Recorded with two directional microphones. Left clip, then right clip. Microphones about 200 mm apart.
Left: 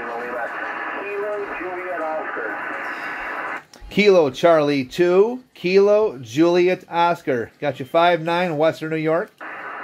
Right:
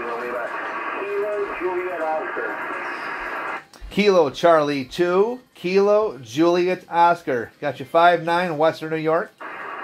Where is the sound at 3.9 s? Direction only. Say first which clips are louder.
Left 2 dB; 40° left (ahead or behind).